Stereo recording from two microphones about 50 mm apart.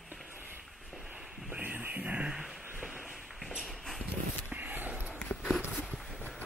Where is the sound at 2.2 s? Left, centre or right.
Centre.